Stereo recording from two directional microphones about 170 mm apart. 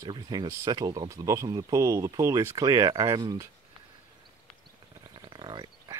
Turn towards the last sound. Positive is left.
turn(degrees=-25)  # may be behind; listen again after turning